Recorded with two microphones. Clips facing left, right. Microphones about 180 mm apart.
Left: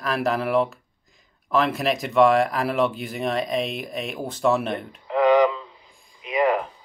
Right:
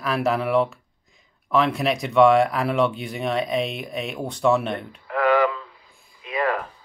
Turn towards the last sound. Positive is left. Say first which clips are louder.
# left 3 dB
turn(degrees=20)  # may be behind; listen again after turning